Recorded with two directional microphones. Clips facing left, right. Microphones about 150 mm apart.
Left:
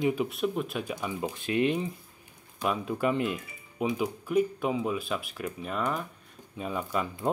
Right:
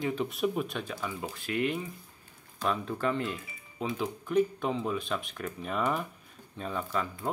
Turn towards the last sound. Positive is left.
turn(degrees=15)  # may be behind; listen again after turning